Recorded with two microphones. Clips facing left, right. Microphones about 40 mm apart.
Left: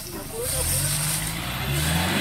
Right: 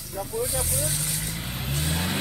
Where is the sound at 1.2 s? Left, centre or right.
Left.